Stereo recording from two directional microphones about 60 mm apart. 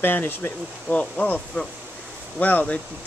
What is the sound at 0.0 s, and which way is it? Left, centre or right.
Speech, left.